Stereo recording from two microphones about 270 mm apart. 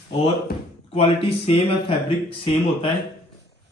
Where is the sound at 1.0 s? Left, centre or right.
Left.